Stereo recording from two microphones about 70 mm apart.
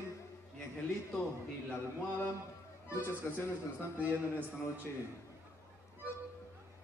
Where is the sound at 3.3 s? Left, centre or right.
Left.